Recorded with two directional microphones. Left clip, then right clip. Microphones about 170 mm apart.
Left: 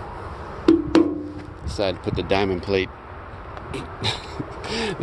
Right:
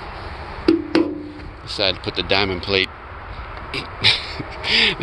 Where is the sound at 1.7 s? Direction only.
20° left (ahead or behind).